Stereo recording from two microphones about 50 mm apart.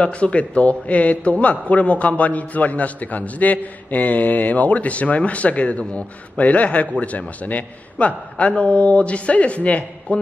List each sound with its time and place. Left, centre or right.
0.0 s a man's voice: left